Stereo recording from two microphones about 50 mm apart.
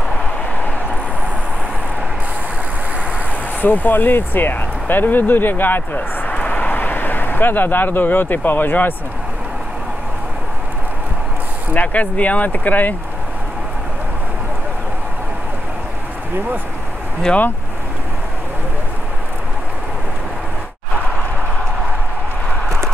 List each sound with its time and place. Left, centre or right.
3.6 s speech: left
6.2 s vehicle: left
11.7 s speech: left